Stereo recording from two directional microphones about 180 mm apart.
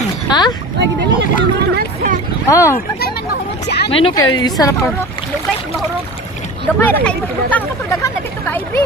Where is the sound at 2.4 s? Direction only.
15° left (ahead or behind).